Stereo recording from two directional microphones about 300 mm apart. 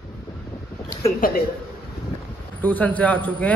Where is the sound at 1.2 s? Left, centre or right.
Left.